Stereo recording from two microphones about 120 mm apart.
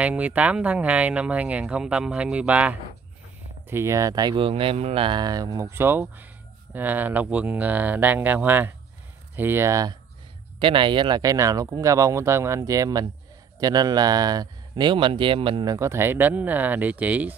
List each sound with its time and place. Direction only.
0.0 s speech: 10° right (ahead or behind); by 4.4 s 35° right (ahead or behind)
4.4 s speech: 50° right (ahead or behind); by 9.9 s 25° right (ahead or behind)
10.6 s speech: 45° right (ahead or behind)
15.6 s speech: 25° right (ahead or behind)